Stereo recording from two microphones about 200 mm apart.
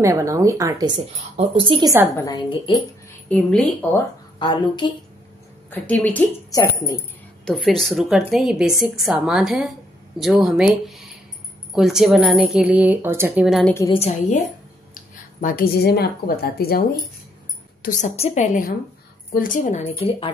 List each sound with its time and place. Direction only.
0.0 s a woman's voice: 15° right (ahead or behind)
0.9 s a woman's voice: 30° right (ahead or behind)
2.1 s a woman's voice: 15° left (ahead or behind)
4.4 s a woman's voice: 25° left (ahead or behind)
5.7 s a woman's voice: 10° left (ahead or behind)
7.4 s a woman's voice: 5° left (ahead or behind)
13.9 s a woman's voice: 30° left (ahead or behind)
15.4 s a woman's voice: 45° left (ahead or behind)
17.8 s a woman's voice: 35° left (ahead or behind)